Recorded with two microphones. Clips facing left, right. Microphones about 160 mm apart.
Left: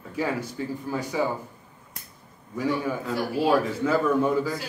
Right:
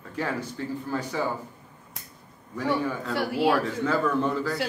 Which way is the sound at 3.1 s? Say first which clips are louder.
Right 1 dB; 70° right (ahead or behind).